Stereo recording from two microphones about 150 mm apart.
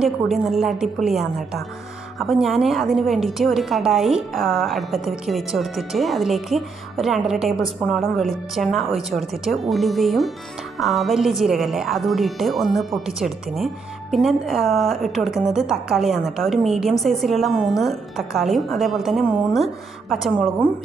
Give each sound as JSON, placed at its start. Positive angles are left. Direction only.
{"t": 0.0, "sound": "a woman's voice", "side_deg": 0}